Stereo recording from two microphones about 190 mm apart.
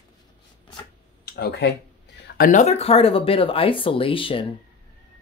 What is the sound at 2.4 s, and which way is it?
Speech, 40° left (ahead or behind).